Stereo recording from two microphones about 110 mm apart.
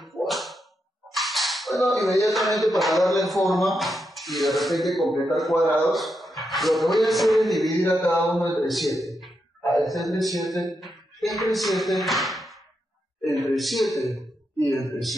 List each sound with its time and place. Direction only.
0.0 s whip: centre (ahead or behind)
1.1 s cap gun: centre (ahead or behind)
1.9 s a man's voice: centre (ahead or behind)
14.6 s a man's voice: 30° left (ahead or behind)